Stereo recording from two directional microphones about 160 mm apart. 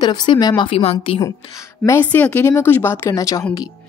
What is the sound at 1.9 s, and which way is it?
Speech, 15° left (ahead or behind).